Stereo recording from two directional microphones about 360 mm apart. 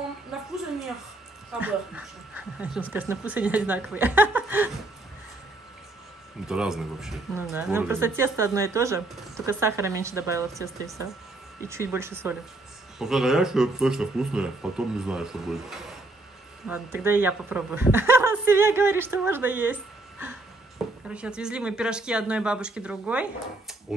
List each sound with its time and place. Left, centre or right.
0.3 s a woman's voice: centre
1.6 s speech: centre
6.4 s speech: centre